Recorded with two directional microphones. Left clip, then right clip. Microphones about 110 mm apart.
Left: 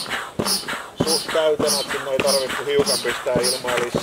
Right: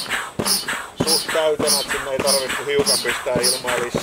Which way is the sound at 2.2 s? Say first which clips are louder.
Right 2 dB; 5° right (ahead or behind).